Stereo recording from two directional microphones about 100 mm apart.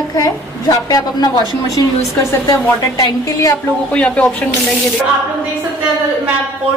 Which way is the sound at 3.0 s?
35° left (ahead or behind).